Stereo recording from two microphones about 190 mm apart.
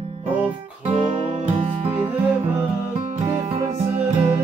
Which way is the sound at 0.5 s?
30° right (ahead or behind).